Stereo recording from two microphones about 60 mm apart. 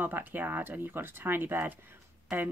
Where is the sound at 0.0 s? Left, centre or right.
Right.